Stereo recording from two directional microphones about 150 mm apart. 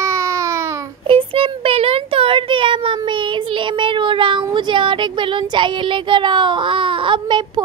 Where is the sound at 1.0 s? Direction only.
35° right (ahead or behind).